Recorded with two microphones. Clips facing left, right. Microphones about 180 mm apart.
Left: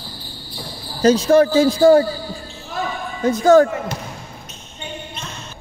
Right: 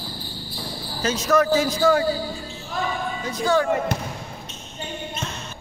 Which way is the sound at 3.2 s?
45° left (ahead or behind).